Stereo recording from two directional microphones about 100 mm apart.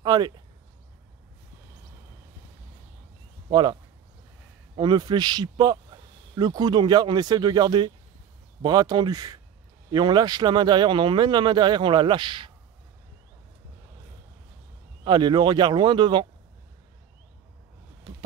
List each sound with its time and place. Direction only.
0.0 s speech: 45° right (ahead or behind)
3.4 s speech: 50° right (ahead or behind)
4.7 s speech: 45° right (ahead or behind)
15.0 s speech: 50° right (ahead or behind)